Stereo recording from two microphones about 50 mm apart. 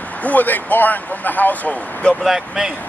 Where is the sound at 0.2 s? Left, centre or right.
Left.